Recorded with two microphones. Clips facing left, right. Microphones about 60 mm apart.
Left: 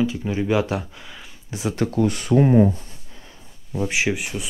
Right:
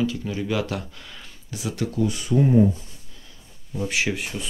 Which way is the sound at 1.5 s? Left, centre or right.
Left.